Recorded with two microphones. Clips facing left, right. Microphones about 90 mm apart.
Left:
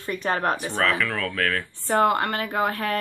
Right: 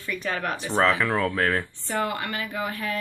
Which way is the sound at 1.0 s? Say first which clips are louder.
Right 2 dB; 25° right (ahead or behind).